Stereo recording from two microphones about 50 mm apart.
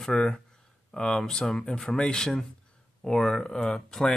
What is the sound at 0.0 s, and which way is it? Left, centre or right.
Speech, centre.